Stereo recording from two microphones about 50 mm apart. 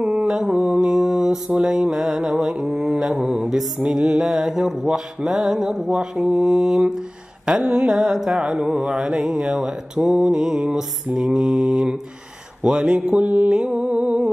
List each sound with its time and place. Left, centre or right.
0.0 s mantra: centre
13.1 s mantra: right
13.5 s mantra: centre